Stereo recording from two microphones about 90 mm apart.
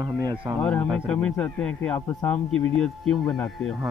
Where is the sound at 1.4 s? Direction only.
15° left (ahead or behind).